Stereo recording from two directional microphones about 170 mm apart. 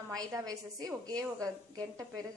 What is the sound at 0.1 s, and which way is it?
A woman's voice, 20° right (ahead or behind).